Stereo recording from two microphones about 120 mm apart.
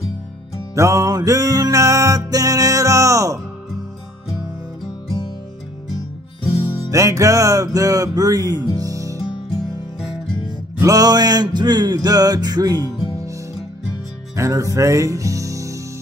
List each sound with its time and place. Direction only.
0.7 s music: 25° right (ahead or behind)
6.9 s music: 25° right (ahead or behind)
10.8 s music: 30° right (ahead or behind)
14.3 s music: 25° right (ahead or behind)